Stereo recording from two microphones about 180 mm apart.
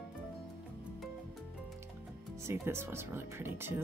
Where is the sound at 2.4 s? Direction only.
15° right (ahead or behind).